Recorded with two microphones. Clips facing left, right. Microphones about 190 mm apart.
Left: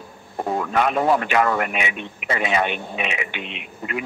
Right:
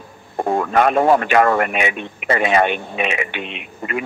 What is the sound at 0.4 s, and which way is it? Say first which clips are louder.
Speech: right 5 dB; 50° right (ahead or behind).